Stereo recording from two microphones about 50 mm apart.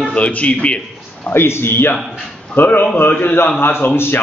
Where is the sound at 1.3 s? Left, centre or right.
Left.